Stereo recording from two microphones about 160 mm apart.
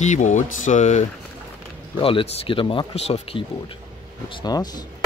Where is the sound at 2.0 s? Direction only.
35° left (ahead or behind).